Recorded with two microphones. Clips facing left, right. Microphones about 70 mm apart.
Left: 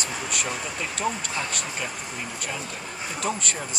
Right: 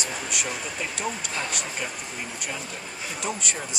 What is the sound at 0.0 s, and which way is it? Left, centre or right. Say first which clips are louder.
Vehicle: left 1 dB; centre.